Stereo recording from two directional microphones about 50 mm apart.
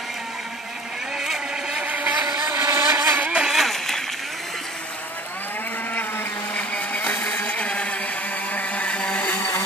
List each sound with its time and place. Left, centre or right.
1.2 s vehicle: centre
1.9 s vehicle: right
3.3 s vehicle: centre
3.5 s a sound: centre
6.5 s vehicle: left
8.5 s blender: left
9.3 s blender: left